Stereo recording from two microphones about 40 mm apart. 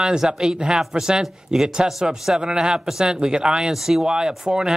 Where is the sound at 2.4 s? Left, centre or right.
Centre.